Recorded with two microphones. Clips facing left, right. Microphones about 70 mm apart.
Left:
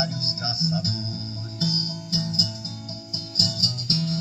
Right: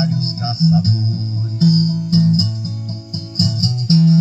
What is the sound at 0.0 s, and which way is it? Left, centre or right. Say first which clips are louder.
Music: right 9 dB; right.